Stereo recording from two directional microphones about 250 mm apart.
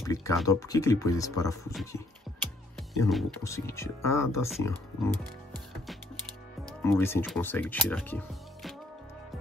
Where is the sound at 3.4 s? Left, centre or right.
Centre.